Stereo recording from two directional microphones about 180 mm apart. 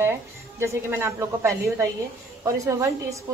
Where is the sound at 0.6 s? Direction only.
15° right (ahead or behind).